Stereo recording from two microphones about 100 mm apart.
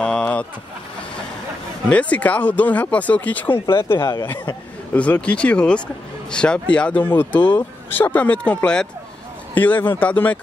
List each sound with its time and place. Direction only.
0.0 s vehicle: 10° left (ahead or behind)
1.9 s speech: 15° left (ahead or behind)
4.0 s speech: 40° left (ahead or behind)
4.9 s speech: 15° left (ahead or behind)